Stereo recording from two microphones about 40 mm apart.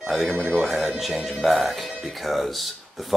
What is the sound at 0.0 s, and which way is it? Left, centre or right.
Speech, centre.